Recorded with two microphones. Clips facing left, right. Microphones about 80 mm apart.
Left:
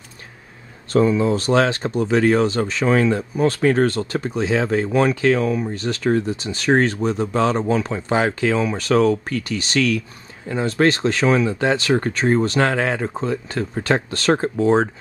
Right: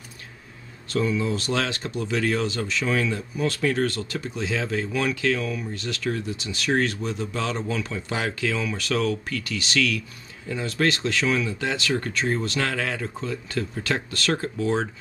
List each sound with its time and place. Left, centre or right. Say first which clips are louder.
0.8 s speech: left 8 dB; left